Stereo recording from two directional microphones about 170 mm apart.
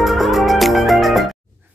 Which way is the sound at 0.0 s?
Centre (ahead or behind).